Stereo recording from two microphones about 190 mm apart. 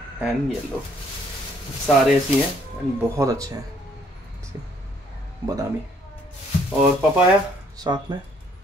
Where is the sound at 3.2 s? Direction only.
20° right (ahead or behind).